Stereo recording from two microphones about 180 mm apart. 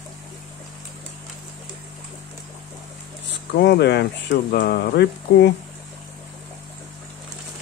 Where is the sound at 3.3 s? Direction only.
70° left (ahead or behind).